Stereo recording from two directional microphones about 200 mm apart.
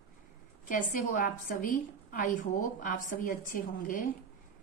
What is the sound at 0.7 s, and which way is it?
A woman's voice, 40° left (ahead or behind).